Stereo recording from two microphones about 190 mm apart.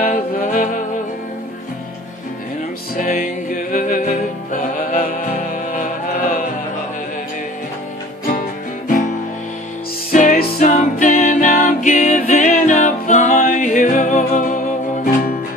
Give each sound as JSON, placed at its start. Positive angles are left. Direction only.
{"t": 0.0, "sound": "music", "side_deg": 45}
{"t": 3.0, "sound": "music", "side_deg": 45}
{"t": 10.1, "sound": "music", "side_deg": 40}